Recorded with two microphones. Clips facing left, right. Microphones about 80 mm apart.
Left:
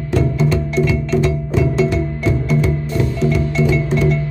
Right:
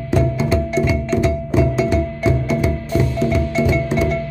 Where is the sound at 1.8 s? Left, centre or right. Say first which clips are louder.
Even; right.